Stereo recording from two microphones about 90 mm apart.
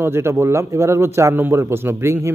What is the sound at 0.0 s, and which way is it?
A man's voice, 25° right (ahead or behind).